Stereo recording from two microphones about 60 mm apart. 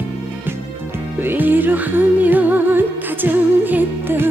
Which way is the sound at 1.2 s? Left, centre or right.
Right.